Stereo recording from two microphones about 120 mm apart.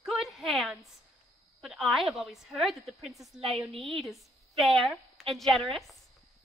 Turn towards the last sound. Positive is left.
turn(degrees=0)  # may be behind; listen again after turning